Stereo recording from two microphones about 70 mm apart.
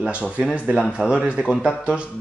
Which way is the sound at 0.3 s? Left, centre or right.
Centre.